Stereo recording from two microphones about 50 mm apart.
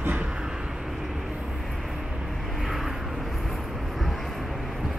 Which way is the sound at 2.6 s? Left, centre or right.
Centre.